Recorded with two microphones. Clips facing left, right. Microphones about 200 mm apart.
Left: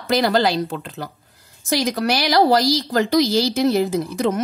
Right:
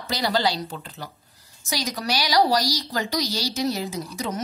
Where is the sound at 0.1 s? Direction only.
55° left (ahead or behind).